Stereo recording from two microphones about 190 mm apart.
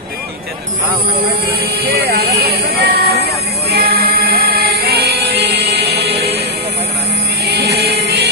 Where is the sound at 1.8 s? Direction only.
60° right (ahead or behind).